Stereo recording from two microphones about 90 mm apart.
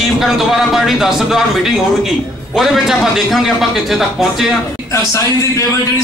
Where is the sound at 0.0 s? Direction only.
5° right (ahead or behind).